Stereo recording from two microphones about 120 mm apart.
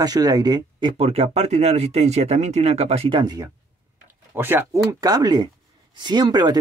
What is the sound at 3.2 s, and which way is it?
Speech, 35° right (ahead or behind).